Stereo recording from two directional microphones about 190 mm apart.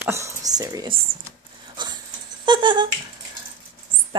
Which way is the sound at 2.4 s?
25° right (ahead or behind).